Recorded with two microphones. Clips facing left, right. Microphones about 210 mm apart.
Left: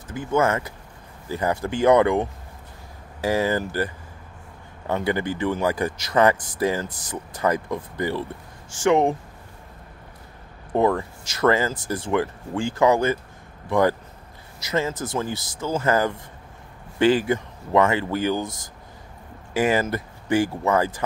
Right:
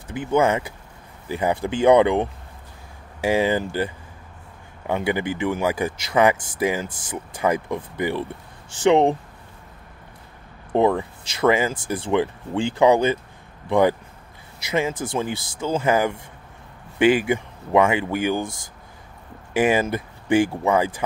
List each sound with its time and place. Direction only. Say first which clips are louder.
0.1 s speech: right 2 dB; 15° right (ahead or behind)
3.3 s speech: right 2 dB; 20° right (ahead or behind)
10.7 s speech: right 2 dB; 20° right (ahead or behind)
19.5 s speech: right 2 dB; 15° right (ahead or behind)